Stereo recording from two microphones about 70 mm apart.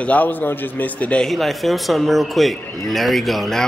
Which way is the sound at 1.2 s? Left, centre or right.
Centre.